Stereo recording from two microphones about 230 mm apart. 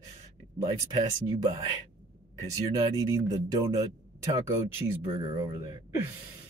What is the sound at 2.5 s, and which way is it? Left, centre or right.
Speech, centre.